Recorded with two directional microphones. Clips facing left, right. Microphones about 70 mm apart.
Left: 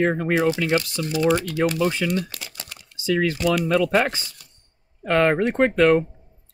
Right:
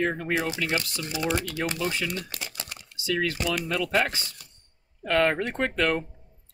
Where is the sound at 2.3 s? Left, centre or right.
Right.